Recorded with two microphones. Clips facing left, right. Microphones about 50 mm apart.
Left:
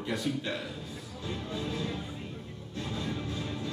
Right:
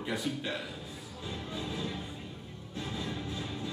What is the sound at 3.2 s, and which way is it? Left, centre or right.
Vehicle, centre.